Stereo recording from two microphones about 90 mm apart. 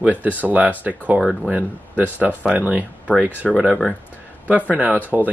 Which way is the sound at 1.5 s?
20° right (ahead or behind).